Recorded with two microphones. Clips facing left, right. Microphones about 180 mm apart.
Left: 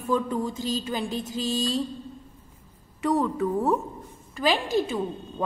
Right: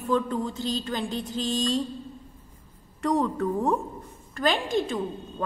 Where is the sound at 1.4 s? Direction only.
5° left (ahead or behind).